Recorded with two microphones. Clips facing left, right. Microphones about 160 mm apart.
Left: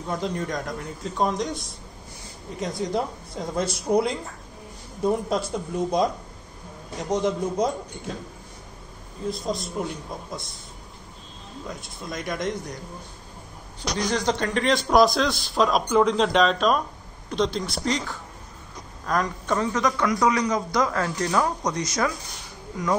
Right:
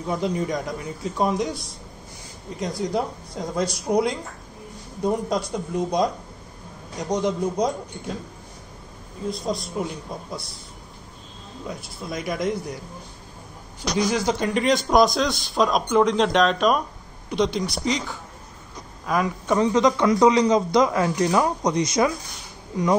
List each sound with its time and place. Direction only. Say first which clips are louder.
0.1 s a man's voice: right 3 dB; 5° right (ahead or behind)
9.3 s a man's voice: right 1 dB; centre (ahead or behind)
11.6 s a man's voice: right 3 dB; 5° right (ahead or behind)
13.9 s a man's voice: right 2 dB; 5° right (ahead or behind)